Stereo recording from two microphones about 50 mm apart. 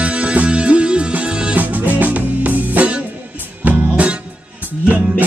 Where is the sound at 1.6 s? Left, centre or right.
Right.